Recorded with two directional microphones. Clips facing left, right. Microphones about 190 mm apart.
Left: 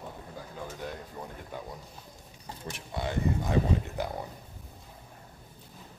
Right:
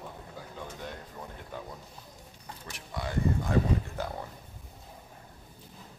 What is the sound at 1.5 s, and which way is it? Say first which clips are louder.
Speech: even; 10° left (ahead or behind).